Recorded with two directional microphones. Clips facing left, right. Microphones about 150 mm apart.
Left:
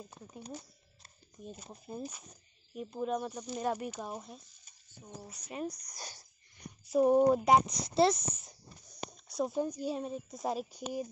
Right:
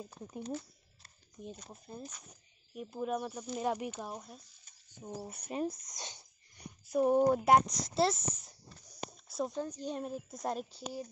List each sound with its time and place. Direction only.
0.4 s speech: 15° left (ahead or behind)
1.9 s speech: 10° left (ahead or behind)
2.7 s speech: centre (ahead or behind)
4.0 s speech: centre (ahead or behind)
5.0 s speech: 25° right (ahead or behind)
6.8 s speech: centre (ahead or behind)
9.1 s a sound: centre (ahead or behind)
9.6 s speech: 10° left (ahead or behind)